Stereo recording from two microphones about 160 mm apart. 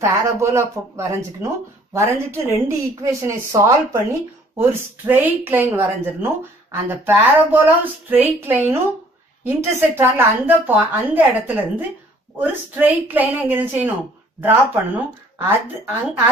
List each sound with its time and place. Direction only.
0.0 s speech: 15° right (ahead or behind)